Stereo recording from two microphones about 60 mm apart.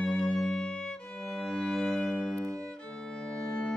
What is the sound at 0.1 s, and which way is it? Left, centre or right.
Violin, centre.